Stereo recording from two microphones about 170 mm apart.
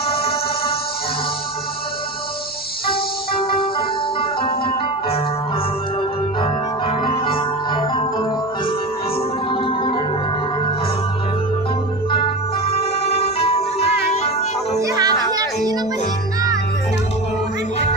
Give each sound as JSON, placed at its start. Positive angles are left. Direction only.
{"t": 0.0, "sound": "music", "side_deg": 65}
{"t": 2.9, "sound": "music", "side_deg": 60}
{"t": 4.2, "sound": "music", "side_deg": 30}
{"t": 6.4, "sound": "music", "side_deg": 30}
{"t": 12.1, "sound": "music", "side_deg": 35}
{"t": 14.8, "sound": "music", "side_deg": -20}